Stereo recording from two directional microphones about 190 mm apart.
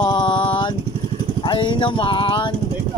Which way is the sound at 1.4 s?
25° left (ahead or behind).